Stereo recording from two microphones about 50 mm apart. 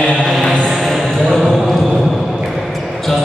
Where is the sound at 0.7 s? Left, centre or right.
Centre.